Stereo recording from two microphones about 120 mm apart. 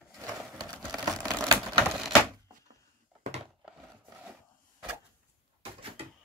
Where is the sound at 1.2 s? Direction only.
30° right (ahead or behind).